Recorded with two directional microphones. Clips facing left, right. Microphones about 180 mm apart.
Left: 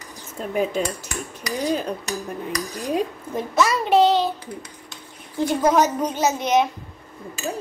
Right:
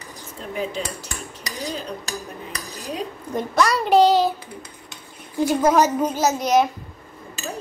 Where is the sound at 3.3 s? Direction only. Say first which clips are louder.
Right 2 dB; 5° left (ahead or behind).